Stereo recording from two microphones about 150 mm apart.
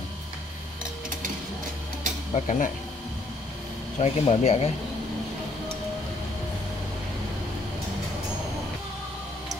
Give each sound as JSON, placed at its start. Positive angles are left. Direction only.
{"t": 2.3, "sound": "speech", "side_deg": 55}
{"t": 4.0, "sound": "speech", "side_deg": 45}